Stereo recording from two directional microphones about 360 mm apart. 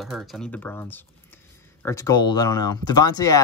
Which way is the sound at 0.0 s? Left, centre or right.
Centre.